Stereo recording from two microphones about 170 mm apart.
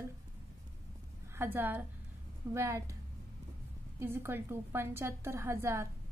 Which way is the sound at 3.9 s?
15° right (ahead or behind).